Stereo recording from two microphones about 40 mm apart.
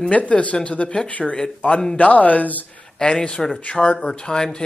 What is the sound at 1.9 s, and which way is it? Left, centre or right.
Speech, left.